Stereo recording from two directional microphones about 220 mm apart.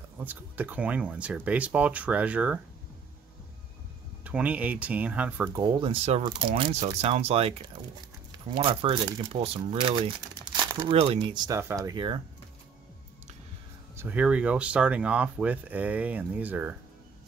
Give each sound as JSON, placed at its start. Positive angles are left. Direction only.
{"t": 0.2, "sound": "speech", "side_deg": -5}
{"t": 4.2, "sound": "speech", "side_deg": -5}
{"t": 13.9, "sound": "speech", "side_deg": -5}